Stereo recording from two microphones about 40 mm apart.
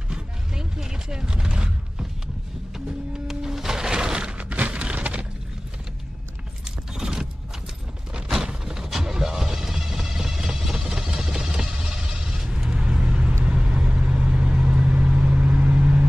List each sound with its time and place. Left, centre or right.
0.1 s music: centre
3.3 s music: centre
4.4 s a sound: right
6.9 s keys jangling: centre
8.5 s vehicle: centre
12.6 s vehicle: right